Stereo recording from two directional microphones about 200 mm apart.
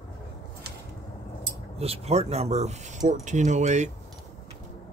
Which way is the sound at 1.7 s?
30° right (ahead or behind).